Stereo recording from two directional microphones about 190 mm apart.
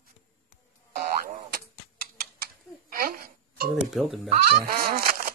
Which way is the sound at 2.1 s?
50° right (ahead or behind).